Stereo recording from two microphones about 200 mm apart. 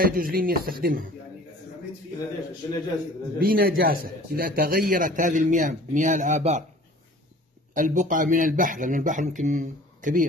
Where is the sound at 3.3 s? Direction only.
45° right (ahead or behind).